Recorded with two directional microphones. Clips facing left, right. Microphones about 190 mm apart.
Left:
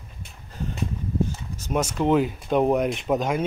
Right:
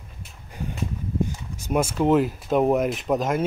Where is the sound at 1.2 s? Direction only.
15° right (ahead or behind).